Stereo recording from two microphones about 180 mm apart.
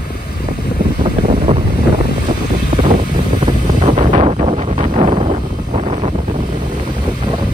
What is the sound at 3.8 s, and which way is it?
Wind noise, 40° right (ahead or behind).